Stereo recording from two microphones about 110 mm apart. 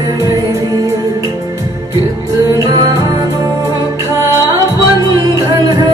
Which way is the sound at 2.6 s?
35° right (ahead or behind).